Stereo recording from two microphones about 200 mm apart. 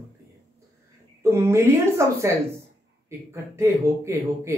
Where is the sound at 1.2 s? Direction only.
15° right (ahead or behind).